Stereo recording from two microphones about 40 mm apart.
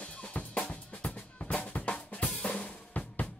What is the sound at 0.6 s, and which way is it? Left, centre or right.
Drum, left.